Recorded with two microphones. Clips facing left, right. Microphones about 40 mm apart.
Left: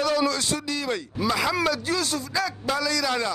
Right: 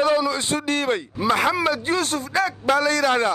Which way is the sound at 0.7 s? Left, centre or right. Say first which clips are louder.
Right 8 dB; right.